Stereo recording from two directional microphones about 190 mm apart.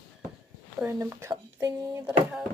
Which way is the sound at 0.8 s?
15° right (ahead or behind).